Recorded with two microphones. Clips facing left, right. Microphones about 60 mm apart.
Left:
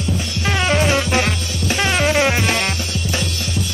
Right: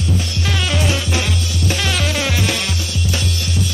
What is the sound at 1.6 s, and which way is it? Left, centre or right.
Music, left.